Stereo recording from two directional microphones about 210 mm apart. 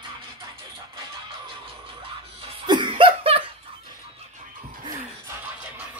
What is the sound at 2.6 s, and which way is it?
Laughter, 20° right (ahead or behind).